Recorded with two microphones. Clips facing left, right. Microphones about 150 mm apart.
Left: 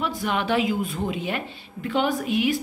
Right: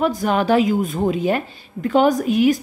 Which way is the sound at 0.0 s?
40° right (ahead or behind).